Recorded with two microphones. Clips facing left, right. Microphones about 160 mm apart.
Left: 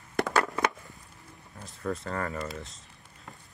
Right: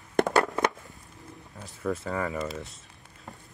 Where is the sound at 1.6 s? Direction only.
Centre (ahead or behind).